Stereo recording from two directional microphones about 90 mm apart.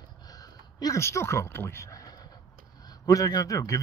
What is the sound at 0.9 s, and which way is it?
A man's voice, 30° left (ahead or behind).